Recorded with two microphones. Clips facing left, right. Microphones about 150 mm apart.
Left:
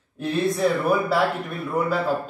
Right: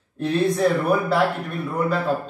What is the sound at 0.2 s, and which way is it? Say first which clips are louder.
A man's voice: right 2 dB; 5° left (ahead or behind).